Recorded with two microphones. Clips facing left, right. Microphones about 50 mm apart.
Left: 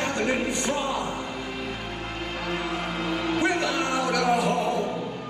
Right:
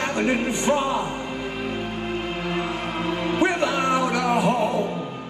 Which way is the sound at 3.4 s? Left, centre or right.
Right.